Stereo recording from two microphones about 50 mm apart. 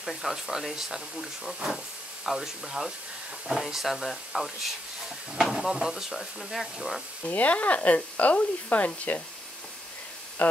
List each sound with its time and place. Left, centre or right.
0.0 s speech: centre
7.2 s speech: left
10.4 s speech: left